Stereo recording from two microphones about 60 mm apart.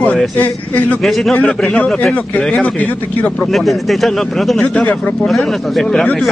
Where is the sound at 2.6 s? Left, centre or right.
Left.